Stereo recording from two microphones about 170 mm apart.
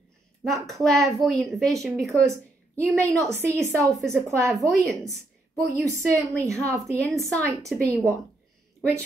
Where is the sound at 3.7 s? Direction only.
20° right (ahead or behind).